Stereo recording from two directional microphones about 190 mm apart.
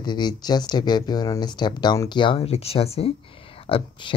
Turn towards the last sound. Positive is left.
turn(degrees=25)  # may be behind; listen again after turning